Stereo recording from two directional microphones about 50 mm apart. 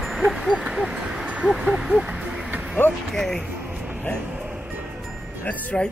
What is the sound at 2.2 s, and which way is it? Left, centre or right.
Music, right.